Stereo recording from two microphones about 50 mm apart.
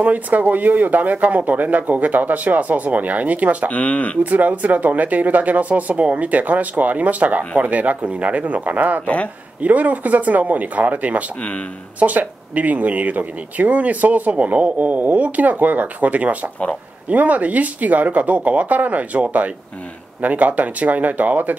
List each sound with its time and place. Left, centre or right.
0.0 s speech: right
3.7 s speech: left
4.2 s speech: right
9.0 s speech: left
9.6 s speech: right